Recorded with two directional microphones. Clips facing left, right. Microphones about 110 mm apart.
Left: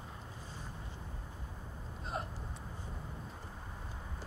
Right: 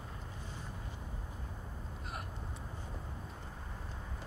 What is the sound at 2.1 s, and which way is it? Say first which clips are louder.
Vehicle: left 7 dB; 25° left (ahead or behind).